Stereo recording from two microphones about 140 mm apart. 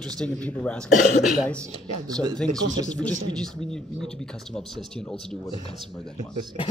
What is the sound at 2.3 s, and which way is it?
A man's voice, 5° left (ahead or behind).